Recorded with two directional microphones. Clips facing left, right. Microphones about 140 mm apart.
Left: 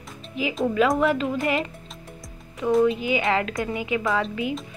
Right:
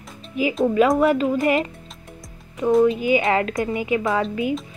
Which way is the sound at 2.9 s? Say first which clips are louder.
Right 4 dB; 45° right (ahead or behind).